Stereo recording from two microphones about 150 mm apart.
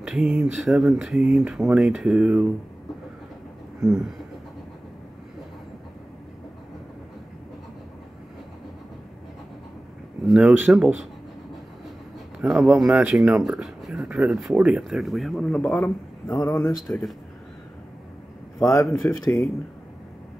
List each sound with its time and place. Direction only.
0.0 s speech: 5° right (ahead or behind)
10.2 s speech: centre (ahead or behind)
12.4 s speech: 5° right (ahead or behind)
16.3 s speech: 20° left (ahead or behind)
18.6 s speech: 20° left (ahead or behind)
18.9 s speech: centre (ahead or behind)